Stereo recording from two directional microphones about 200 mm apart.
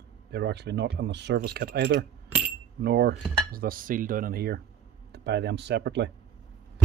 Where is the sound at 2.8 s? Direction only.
55° right (ahead or behind).